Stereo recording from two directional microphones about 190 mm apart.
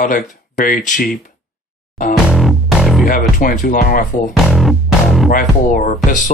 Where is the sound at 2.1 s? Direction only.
Centre (ahead or behind).